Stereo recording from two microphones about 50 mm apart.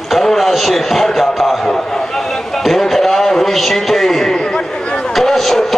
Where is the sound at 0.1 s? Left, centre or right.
Centre.